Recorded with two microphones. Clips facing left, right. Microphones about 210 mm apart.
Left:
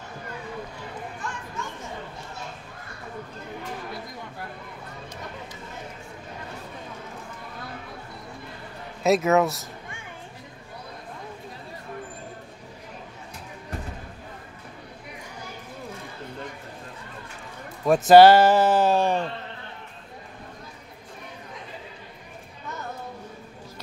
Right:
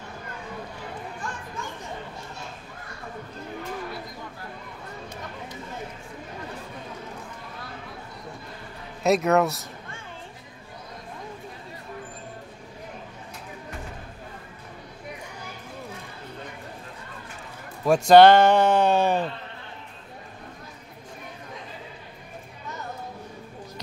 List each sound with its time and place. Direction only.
9.0 s speech: centre (ahead or behind)
17.8 s speech: 5° left (ahead or behind)